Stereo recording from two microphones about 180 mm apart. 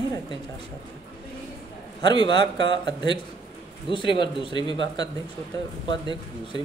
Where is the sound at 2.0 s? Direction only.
25° left (ahead or behind).